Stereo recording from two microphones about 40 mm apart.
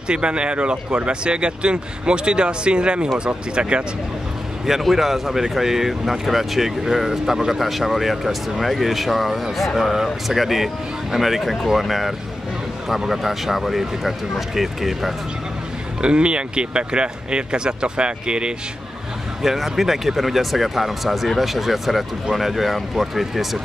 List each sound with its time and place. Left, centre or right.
0.1 s speech: right
4.6 s speech: centre
16.0 s speech: right
19.4 s speech: centre